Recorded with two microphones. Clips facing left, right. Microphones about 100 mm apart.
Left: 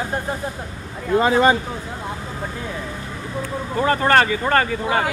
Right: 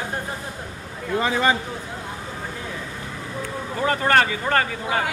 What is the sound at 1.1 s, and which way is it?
Speech, 30° left (ahead or behind).